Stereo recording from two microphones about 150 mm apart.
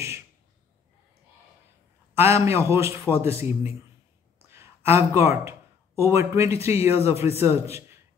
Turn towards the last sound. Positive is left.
turn(degrees=-15)  # may be behind; listen again after turning